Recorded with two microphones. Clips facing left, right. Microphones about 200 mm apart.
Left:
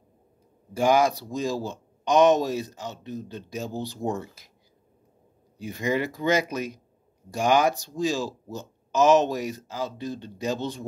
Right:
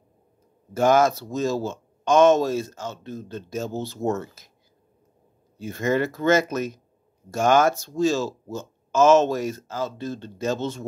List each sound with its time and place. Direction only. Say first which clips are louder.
0.7 s speech: right 2 dB; 15° left (ahead or behind)
5.6 s speech: right 3 dB; 15° left (ahead or behind)